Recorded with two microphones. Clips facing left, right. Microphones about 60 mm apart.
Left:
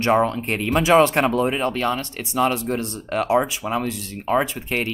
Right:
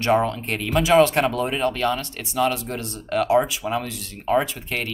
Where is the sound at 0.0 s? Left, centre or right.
Centre.